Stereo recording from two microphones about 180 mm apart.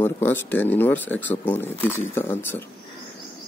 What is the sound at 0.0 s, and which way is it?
Speech, 10° left (ahead or behind).